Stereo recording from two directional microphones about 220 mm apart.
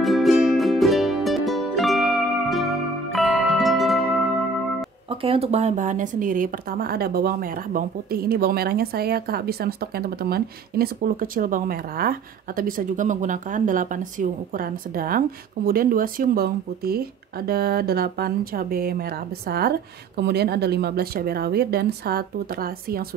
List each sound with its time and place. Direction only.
0.0 s music: centre (ahead or behind)
5.1 s a woman's voice: 25° right (ahead or behind); by 23.0 s 45° right (ahead or behind)